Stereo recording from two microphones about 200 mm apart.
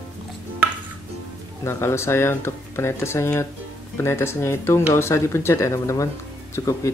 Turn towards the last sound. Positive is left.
turn(degrees=15)  # may be behind; listen again after turning